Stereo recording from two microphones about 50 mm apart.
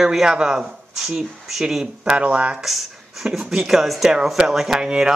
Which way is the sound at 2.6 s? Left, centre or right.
Centre.